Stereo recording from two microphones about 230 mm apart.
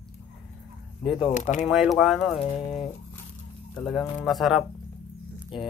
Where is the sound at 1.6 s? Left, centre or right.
Centre.